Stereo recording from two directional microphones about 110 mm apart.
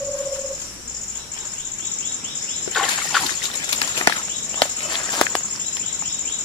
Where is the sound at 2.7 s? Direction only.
Centre (ahead or behind).